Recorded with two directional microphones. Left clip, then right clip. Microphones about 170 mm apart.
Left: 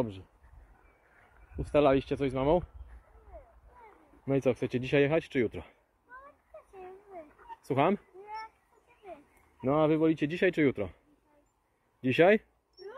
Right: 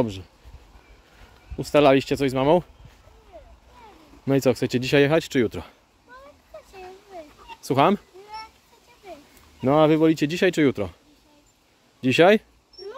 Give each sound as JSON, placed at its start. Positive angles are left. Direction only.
{"t": 1.6, "sound": "speech", "side_deg": -25}
{"t": 4.3, "sound": "speech", "side_deg": -25}
{"t": 7.6, "sound": "cat", "side_deg": -15}
{"t": 9.6, "sound": "speech", "side_deg": -30}
{"t": 12.0, "sound": "speech", "side_deg": -15}